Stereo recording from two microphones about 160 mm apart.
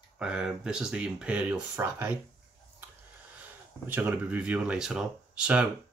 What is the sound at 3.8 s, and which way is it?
Speech, 15° right (ahead or behind).